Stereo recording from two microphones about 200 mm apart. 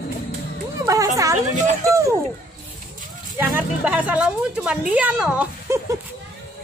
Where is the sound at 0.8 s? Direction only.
15° right (ahead or behind).